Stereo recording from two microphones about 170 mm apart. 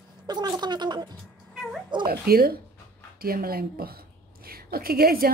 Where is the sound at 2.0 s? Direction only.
60° right (ahead or behind).